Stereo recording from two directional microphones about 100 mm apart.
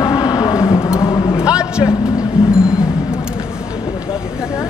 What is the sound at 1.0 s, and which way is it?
Vehicle, 40° left (ahead or behind).